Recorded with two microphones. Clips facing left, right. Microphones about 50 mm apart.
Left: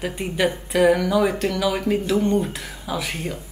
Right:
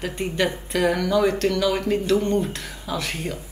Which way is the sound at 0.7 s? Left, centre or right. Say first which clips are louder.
Left 6 dB; centre.